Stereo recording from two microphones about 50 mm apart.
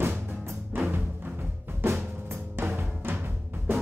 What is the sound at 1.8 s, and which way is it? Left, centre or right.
Drum, right.